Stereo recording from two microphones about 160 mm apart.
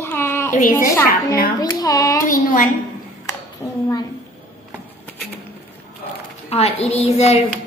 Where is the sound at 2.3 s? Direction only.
55° left (ahead or behind).